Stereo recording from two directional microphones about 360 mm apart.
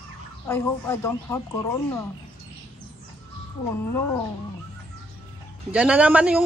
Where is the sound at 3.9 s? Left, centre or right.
Centre.